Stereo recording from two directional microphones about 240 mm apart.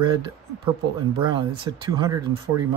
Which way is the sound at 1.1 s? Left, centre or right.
Right.